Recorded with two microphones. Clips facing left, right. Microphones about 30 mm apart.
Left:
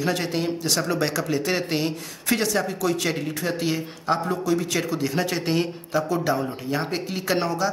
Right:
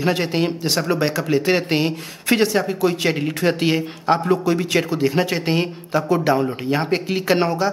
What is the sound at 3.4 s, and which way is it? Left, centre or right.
A man's voice, right.